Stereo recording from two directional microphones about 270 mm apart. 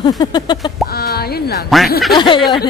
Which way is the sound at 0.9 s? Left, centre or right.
Left.